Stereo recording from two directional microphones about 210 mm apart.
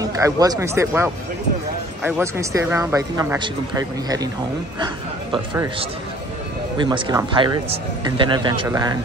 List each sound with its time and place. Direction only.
0.0 s a man's voice: 15° right (ahead or behind)